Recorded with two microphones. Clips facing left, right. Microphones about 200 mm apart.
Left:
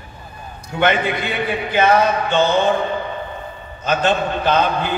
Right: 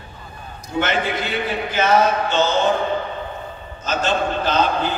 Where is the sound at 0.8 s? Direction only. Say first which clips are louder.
Left 4 dB; 55° left (ahead or behind).